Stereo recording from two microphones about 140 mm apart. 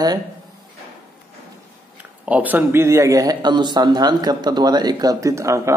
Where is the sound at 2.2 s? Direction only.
10° right (ahead or behind).